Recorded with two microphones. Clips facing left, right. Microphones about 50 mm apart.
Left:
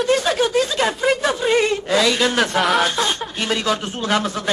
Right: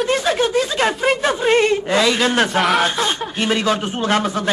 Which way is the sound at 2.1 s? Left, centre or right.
Centre.